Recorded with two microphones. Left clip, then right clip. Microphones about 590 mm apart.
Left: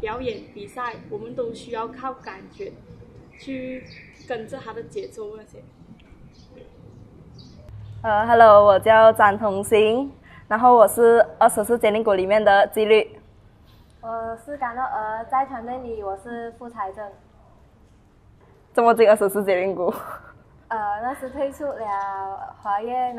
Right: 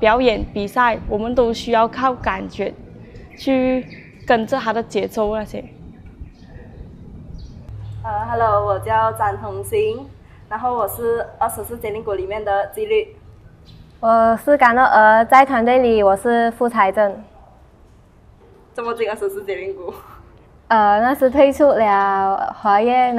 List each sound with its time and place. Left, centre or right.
0.0 s a woman's voice: right
4.3 s a woman's voice: right
8.0 s a woman's voice: left
14.0 s a woman's voice: right
18.8 s a woman's voice: left
20.6 s a woman's voice: right